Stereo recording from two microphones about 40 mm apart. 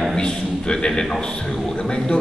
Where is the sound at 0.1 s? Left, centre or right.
Centre.